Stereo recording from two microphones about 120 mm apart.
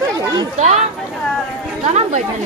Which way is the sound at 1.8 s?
70° right (ahead or behind).